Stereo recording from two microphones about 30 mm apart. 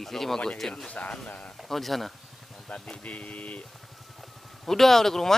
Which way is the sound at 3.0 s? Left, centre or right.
Left.